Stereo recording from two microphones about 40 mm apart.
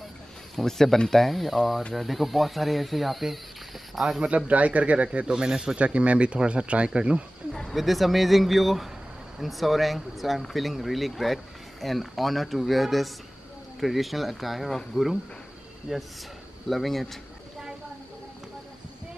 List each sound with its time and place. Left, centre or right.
0.6 s speech: centre
4.5 s a man's voice: right
5.2 s speech: centre
5.8 s speech: right
7.7 s speech: centre
16.6 s speech: centre